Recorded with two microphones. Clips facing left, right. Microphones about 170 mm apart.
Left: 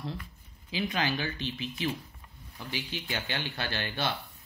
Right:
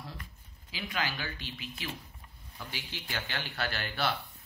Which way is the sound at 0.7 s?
20° left (ahead or behind).